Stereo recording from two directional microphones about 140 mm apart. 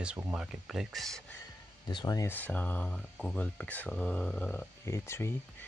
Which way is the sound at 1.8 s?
25° left (ahead or behind).